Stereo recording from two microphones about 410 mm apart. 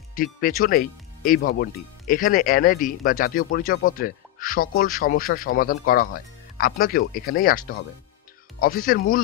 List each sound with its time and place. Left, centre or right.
0.1 s speech: centre